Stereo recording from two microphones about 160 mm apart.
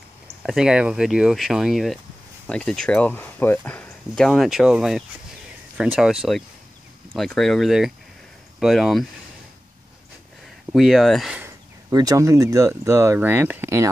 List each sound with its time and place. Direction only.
0.4 s speech: 5° right (ahead or behind)
10.7 s speech: centre (ahead or behind)
11.3 s speech: 20° right (ahead or behind)